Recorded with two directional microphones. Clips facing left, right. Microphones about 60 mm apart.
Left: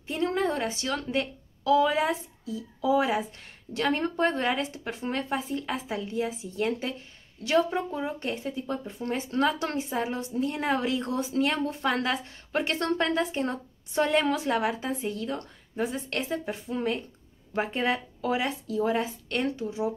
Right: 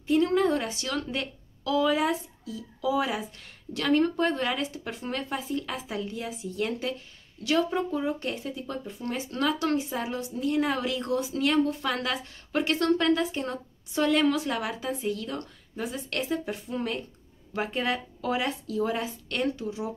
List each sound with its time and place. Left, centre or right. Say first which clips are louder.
0.0 s a sound: right 4 dB; centre
0.7 s a woman's voice: left 1 dB; left
8.8 s a woman's voice: left 2 dB; left